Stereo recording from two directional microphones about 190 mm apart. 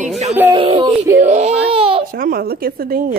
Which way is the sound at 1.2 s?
35° right (ahead or behind).